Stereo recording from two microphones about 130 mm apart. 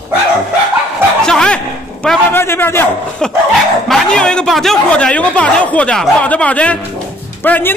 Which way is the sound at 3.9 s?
5° left (ahead or behind).